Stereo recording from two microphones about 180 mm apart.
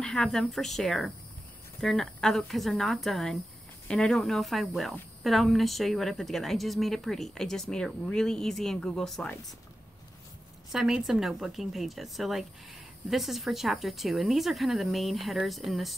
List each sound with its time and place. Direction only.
0.0 s a woman's voice: 5° left (ahead or behind)
10.7 s a woman's voice: centre (ahead or behind)